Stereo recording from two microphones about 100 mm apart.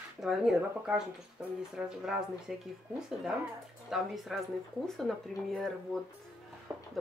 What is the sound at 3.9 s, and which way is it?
Speech, centre (ahead or behind).